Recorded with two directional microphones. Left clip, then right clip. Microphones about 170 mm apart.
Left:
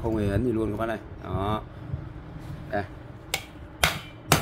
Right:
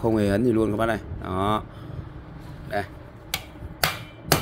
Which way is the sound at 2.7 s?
60° right (ahead or behind).